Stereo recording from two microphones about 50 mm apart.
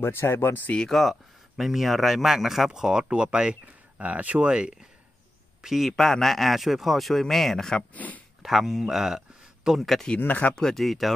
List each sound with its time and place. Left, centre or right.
0.0 s speech: left
0.8 s speech: centre
4.0 s speech: right
4.5 s speech: centre
5.6 s a man's voice: centre
5.9 s speech: centre
7.9 s speech: left
8.4 s speech: centre
9.8 s speech: centre
10.2 s speech: left
10.5 s speech: centre